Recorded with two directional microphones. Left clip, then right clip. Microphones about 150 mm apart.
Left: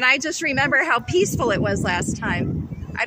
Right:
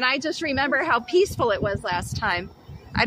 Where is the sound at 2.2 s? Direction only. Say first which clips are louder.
Right 1 dB; 20° right (ahead or behind).